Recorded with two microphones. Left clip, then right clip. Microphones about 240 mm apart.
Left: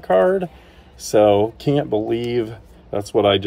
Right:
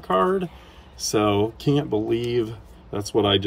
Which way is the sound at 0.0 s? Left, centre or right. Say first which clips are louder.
Left 5 dB; centre.